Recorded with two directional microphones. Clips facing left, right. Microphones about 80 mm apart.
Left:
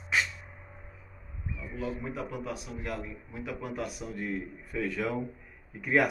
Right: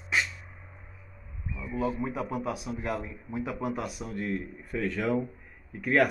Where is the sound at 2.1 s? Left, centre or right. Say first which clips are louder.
Right 4 dB; centre.